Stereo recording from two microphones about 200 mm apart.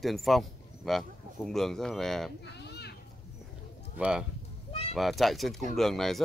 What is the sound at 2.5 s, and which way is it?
Children playing, 55° left (ahead or behind).